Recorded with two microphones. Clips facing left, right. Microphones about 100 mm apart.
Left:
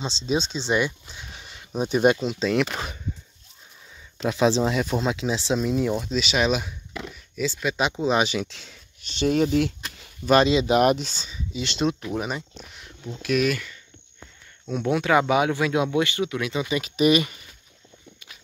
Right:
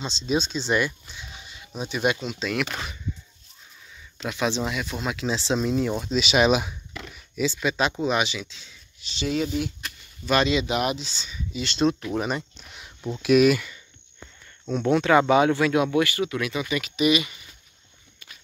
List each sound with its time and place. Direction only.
0.0 s speech: 30° left (ahead or behind)
1.1 s speech: 50° left (ahead or behind); by 2.6 s 30° left (ahead or behind)
4.3 s speech: 30° left (ahead or behind)
5.1 s speech: 15° left (ahead or behind)
6.1 s speech: 5° right (ahead or behind)
6.9 s a sound: 15° left (ahead or behind)
7.3 s speech: centre (ahead or behind)
8.0 s speech: 30° left (ahead or behind)
8.3 s speech: 60° left (ahead or behind)
10.2 s speech: 35° left (ahead or behind); by 11.2 s 50° left (ahead or behind)
11.2 s speech: 20° left (ahead or behind); by 12.4 s 5° left (ahead or behind)
12.6 s a sound: 5° right (ahead or behind)
13.2 s speech: 10° right (ahead or behind)
14.7 s speech: 10° left (ahead or behind); by 17.4 s 40° left (ahead or behind)